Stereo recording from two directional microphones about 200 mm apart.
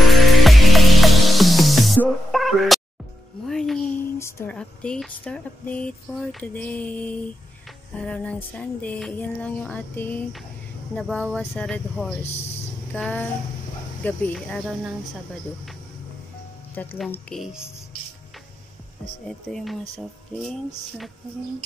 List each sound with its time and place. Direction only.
0.0 s music: centre (ahead or behind)
4.0 s speech: 15° left (ahead or behind)
12.3 s speech: 30° left (ahead or behind)
12.9 s speech: 5° left (ahead or behind)
16.7 s speech: 10° left (ahead or behind)
19.2 s speech: centre (ahead or behind)